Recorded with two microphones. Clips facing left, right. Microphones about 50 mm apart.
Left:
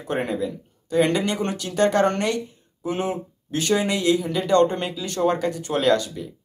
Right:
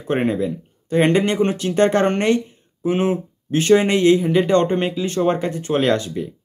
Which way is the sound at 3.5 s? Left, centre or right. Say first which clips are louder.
Right 7 dB; right.